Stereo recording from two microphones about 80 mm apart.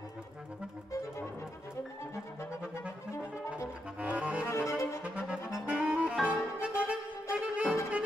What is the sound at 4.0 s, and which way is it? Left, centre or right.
Saxophone, centre.